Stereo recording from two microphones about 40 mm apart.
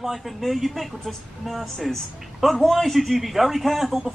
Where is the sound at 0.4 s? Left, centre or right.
Centre.